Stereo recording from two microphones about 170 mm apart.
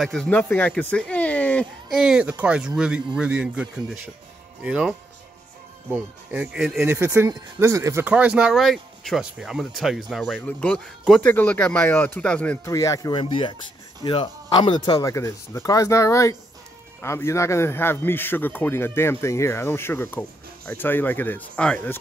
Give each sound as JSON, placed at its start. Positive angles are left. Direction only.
{"t": 0.0, "sound": "speech", "side_deg": 5}
{"t": 6.3, "sound": "a man's voice", "side_deg": -5}
{"t": 12.7, "sound": "a man's voice", "side_deg": 20}